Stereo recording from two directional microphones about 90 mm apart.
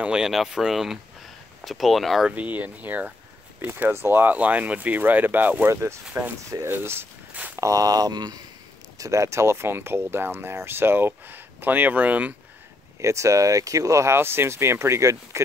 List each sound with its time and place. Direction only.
0.0 s speech: 10° right (ahead or behind)
2.3 s speech: 20° right (ahead or behind)
5.7 s speech: 30° right (ahead or behind)
7.5 s speech: 40° right (ahead or behind)
8.9 s speech: 35° right (ahead or behind); by 12.4 s 15° right (ahead or behind)
13.0 s speech: 35° right (ahead or behind)